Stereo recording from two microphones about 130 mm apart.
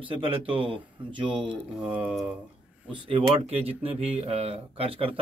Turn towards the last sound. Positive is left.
turn(degrees=-45)  # may be behind; listen again after turning